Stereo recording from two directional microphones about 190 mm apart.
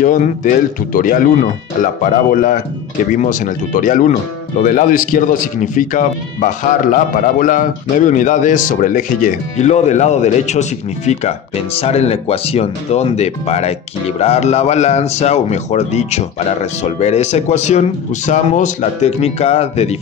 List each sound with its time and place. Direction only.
0.0 s speech: 45° left (ahead or behind)